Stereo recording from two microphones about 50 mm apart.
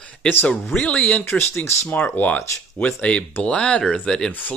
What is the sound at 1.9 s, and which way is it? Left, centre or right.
Speech, left.